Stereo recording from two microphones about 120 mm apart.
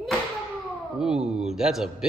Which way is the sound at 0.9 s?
5° right (ahead or behind).